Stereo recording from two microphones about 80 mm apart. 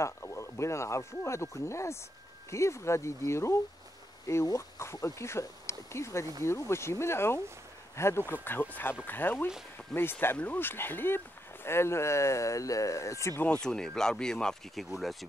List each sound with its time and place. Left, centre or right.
0.0 s speech: left
9.9 s speech: centre
10.2 s speech: left
13.6 s speech: centre